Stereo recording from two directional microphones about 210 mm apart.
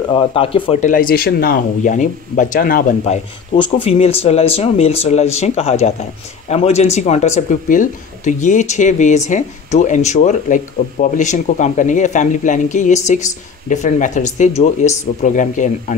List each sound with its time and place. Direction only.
0.1 s speech: 25° left (ahead or behind); by 3.2 s 40° left (ahead or behind)
3.5 s speech: 25° left (ahead or behind)